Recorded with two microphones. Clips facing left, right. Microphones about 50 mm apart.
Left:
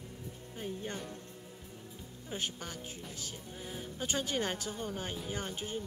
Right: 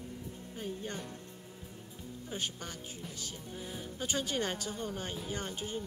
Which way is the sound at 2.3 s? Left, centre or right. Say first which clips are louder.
Left 1 dB; centre.